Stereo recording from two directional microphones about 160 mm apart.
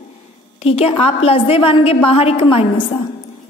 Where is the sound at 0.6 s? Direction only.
40° left (ahead or behind).